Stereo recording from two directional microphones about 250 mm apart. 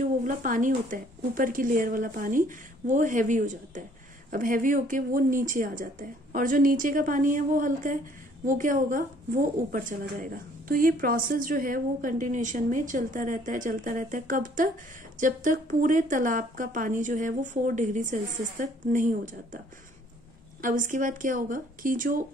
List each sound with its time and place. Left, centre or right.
0.0 s speech: right
20.6 s speech: right